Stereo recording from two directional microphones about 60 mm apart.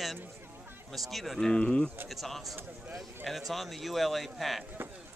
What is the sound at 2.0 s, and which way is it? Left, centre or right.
A man's voice, centre.